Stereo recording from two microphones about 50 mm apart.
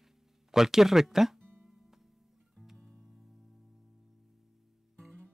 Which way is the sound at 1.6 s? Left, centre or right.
Centre.